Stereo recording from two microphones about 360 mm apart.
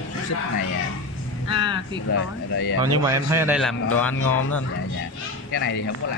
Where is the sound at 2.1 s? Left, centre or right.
Left.